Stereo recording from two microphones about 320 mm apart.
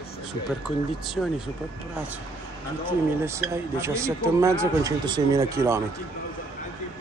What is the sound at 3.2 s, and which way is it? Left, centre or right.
Speech, centre.